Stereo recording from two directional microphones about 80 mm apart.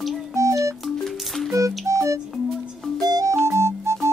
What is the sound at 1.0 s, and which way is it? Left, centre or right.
Music, centre.